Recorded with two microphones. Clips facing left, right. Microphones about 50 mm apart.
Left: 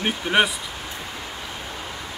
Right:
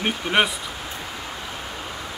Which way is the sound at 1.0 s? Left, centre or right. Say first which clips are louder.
Right 1 dB; centre.